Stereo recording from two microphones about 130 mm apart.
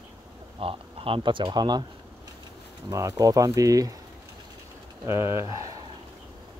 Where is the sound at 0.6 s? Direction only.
45° right (ahead or behind).